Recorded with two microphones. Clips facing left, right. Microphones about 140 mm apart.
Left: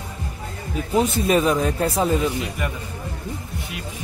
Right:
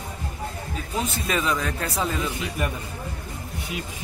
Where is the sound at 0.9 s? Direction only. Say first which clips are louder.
Left 8 dB; 30° left (ahead or behind).